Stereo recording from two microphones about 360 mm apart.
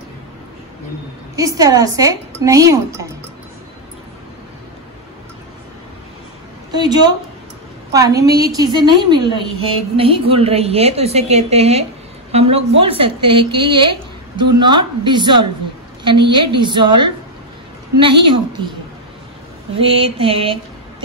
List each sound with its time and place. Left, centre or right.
1.3 s a woman's voice: centre
6.7 s a woman's voice: centre
17.9 s a woman's voice: centre
19.8 s a woman's voice: centre